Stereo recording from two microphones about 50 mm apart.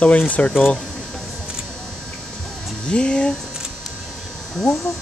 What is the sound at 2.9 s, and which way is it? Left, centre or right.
Speech, centre.